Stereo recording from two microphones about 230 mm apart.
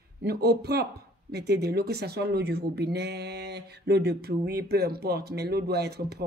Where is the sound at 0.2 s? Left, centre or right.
Right.